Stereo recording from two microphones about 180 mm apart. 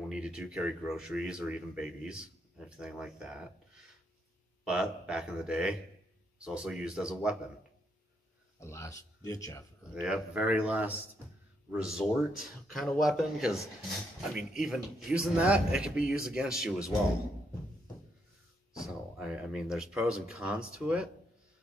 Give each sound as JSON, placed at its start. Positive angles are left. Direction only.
{"t": 0.1, "sound": "speech", "side_deg": -5}
{"t": 8.5, "sound": "speech", "side_deg": 15}
{"t": 10.0, "sound": "speech", "side_deg": -5}
{"t": 19.1, "sound": "speech", "side_deg": -5}